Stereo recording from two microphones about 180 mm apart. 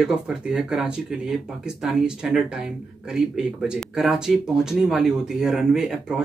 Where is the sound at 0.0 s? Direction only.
5° right (ahead or behind).